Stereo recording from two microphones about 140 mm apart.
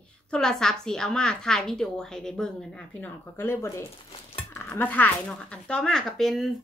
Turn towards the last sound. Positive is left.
turn(degrees=0)  # may be behind; listen again after turning